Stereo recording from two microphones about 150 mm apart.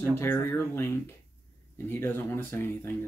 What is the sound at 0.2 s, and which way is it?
Speech, 15° left (ahead or behind).